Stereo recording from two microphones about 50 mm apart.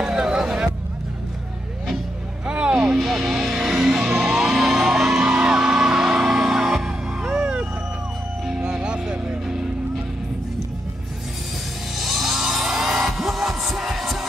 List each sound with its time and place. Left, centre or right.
0.0 s a sound: centre
2.4 s vehicle: centre
3.0 s music: centre
7.2 s a sound: right
8.5 s music: centre
12.0 s music: centre